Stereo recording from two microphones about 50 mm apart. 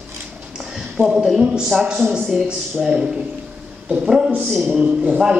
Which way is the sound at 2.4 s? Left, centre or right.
Centre.